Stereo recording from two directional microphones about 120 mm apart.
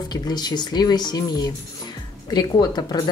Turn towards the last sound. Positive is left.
turn(degrees=35)  # may be behind; listen again after turning